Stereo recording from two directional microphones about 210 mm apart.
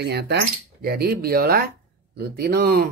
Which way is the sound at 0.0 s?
50° right (ahead or behind).